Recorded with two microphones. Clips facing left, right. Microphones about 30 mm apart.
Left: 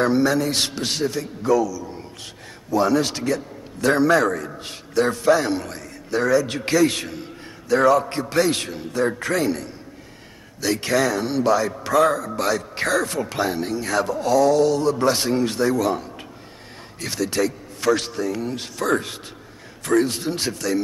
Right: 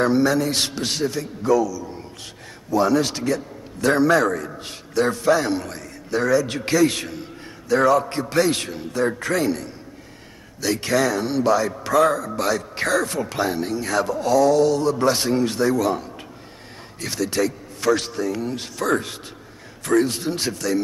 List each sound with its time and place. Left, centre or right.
0.0 s a man's voice: centre